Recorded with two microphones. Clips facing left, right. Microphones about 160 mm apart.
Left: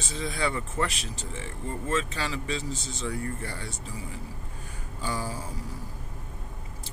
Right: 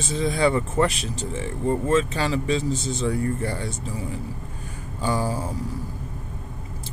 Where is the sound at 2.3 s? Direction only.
20° right (ahead or behind).